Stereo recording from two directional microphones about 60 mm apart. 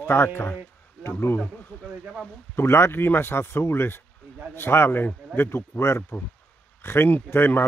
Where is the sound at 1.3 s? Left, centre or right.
Left.